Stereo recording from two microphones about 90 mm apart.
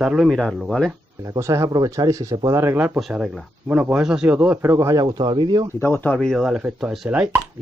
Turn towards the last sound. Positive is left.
turn(degrees=-10)  # may be behind; listen again after turning